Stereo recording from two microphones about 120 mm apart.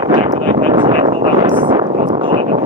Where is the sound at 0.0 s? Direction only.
45° right (ahead or behind).